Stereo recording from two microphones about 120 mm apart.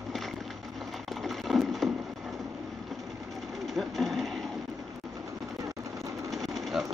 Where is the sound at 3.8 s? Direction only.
Centre (ahead or behind).